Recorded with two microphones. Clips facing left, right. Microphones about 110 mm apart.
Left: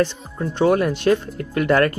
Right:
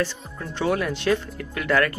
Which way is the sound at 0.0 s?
20° left (ahead or behind).